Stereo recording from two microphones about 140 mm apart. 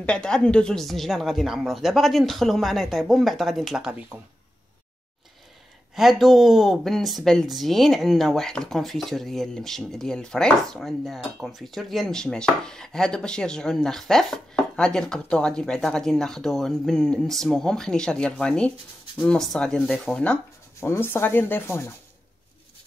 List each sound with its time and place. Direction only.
0.0 s speech: 5° left (ahead or behind)
5.9 s speech: centre (ahead or behind); by 21.9 s 15° left (ahead or behind)